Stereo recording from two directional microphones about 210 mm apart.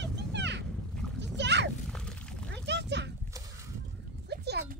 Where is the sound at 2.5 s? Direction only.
55° right (ahead or behind).